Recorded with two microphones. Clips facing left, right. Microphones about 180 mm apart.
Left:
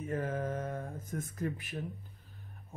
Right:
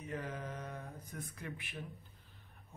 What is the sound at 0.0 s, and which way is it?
Mantra, 45° left (ahead or behind).